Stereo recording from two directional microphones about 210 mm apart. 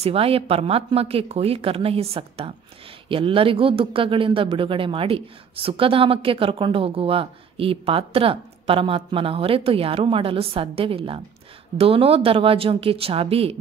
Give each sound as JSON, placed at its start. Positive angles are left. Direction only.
{"t": 0.0, "sound": "speech", "side_deg": -25}